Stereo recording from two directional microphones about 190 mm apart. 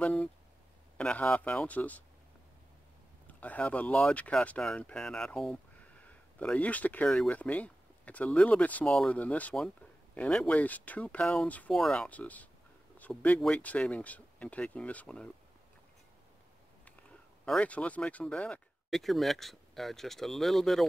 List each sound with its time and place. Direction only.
0.0 s speech: 5° left (ahead or behind)
3.3 s speech: 10° left (ahead or behind)
17.5 s speech: 5° left (ahead or behind)